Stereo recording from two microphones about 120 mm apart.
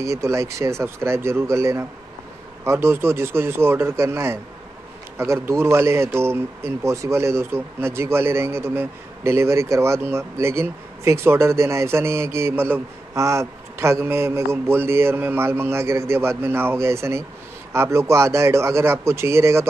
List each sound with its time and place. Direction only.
0.0 s a man's voice: 25° right (ahead or behind)